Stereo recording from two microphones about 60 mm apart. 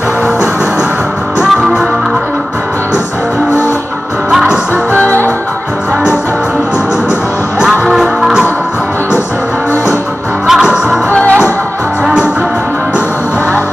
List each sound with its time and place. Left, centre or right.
4.3 s music: centre
5.0 s music: left
7.6 s music: centre
10.4 s music: centre